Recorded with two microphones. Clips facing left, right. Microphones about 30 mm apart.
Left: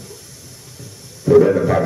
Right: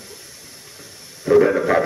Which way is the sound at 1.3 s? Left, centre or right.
Centre.